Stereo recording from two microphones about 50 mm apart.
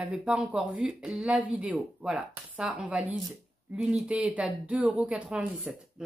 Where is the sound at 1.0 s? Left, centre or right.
Centre.